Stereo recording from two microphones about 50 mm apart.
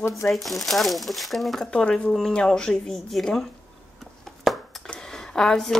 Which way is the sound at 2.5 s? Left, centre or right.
Centre.